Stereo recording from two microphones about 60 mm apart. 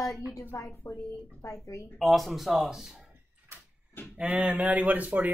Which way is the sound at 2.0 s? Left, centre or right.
Centre.